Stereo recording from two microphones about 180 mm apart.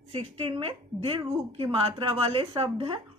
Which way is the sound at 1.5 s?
30° right (ahead or behind).